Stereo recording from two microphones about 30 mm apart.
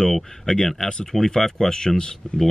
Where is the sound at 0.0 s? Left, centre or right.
Left.